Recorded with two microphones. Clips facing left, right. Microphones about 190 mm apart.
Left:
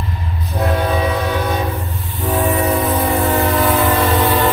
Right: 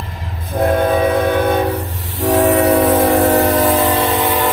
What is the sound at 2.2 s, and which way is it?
Train, 80° right.